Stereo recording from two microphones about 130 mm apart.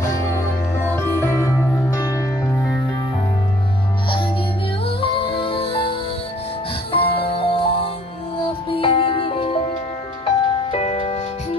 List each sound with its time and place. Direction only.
0.7 s music: 20° left (ahead or behind)
4.8 s music: 40° left (ahead or behind)